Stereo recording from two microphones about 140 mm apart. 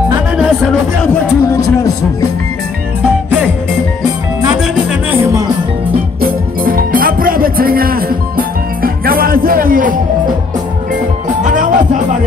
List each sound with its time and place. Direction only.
1.0 s a sound: 20° left (ahead or behind)
6.2 s music: 90° right
11.4 s music: 65° right (ahead or behind)